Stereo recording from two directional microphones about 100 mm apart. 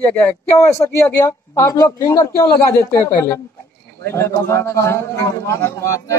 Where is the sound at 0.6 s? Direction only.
30° left (ahead or behind).